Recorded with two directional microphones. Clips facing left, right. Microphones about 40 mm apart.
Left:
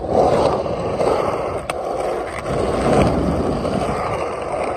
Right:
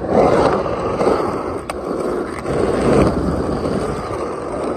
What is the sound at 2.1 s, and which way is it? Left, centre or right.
Vehicle, left.